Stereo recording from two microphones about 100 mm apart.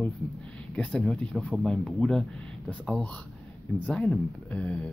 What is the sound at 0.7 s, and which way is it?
Speech, 10° left (ahead or behind).